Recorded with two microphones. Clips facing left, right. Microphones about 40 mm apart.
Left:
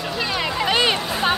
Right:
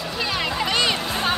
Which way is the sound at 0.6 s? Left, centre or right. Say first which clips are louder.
Left 5 dB; centre.